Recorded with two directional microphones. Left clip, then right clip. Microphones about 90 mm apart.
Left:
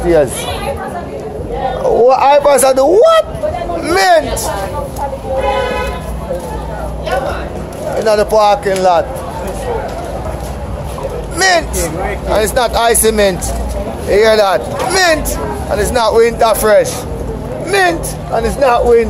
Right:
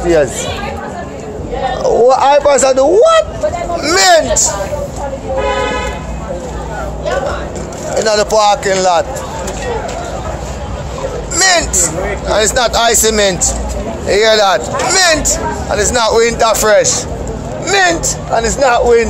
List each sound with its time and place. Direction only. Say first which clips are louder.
1.8 s speech: even; 10° left (ahead or behind)
2.4 s speech: even; 35° left (ahead or behind)
7.9 s speech: even; 5° right (ahead or behind)
11.3 s speech: even; 25° right (ahead or behind)
12.3 s speech: right 1 dB; centre (ahead or behind)